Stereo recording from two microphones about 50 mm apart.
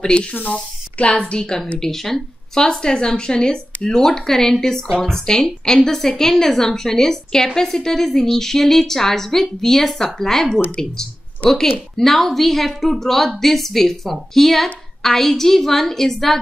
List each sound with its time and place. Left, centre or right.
0.0 s speech: centre
0.3 s speech: left
1.3 s a woman's voice: centre